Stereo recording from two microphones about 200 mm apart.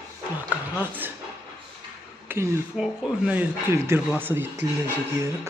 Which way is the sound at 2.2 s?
10° right (ahead or behind).